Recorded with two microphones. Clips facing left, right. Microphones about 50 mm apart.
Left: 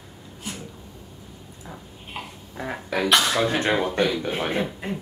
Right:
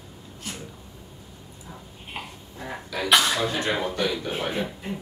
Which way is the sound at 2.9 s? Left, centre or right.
Left.